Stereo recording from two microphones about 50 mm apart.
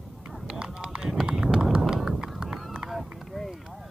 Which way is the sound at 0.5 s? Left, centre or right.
Centre.